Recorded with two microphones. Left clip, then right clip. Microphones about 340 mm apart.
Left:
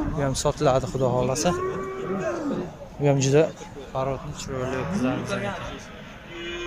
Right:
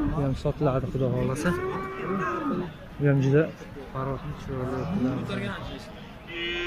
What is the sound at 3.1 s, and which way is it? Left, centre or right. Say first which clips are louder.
Speech: left 4 dB; centre.